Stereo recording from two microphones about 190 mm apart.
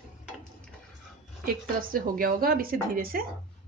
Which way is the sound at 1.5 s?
50° right (ahead or behind).